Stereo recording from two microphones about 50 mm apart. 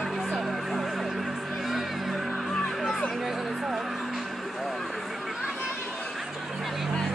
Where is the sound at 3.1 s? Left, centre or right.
Centre.